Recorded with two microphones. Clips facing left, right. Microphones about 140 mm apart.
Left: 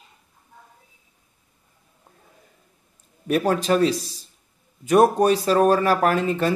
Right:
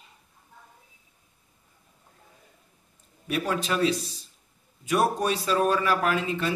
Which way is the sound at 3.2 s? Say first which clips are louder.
Left 7 dB; 45° left (ahead or behind).